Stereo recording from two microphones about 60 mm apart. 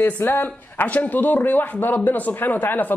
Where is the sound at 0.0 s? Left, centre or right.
Left.